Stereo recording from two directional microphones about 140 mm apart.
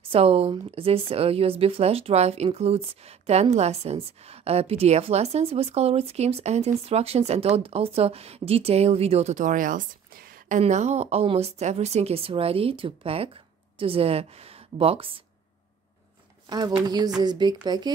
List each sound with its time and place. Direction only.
0.1 s speech: 45° right (ahead or behind); by 10.6 s 90° right
10.6 s speech: 55° right (ahead or behind)
16.4 s a woman's voice: 30° right (ahead or behind)